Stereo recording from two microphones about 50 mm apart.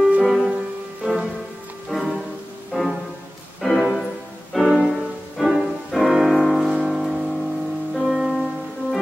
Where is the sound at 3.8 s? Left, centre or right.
Centre.